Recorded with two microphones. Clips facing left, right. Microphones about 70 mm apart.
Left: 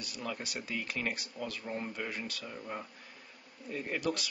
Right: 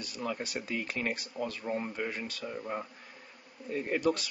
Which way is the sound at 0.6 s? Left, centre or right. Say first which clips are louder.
Right 3 dB; centre.